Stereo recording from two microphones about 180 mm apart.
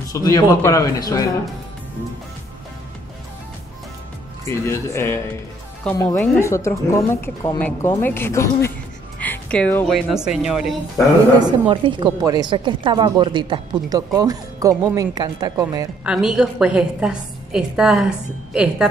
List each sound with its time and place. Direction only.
0.1 s speech: 20° left (ahead or behind)
4.5 s a woman's voice: 15° left (ahead or behind)
9.2 s music: 5° left (ahead or behind)
9.9 s a woman's voice: 5° right (ahead or behind)
11.3 s a woman's voice: 25° right (ahead or behind)
16.1 s a woman's voice: 5° right (ahead or behind)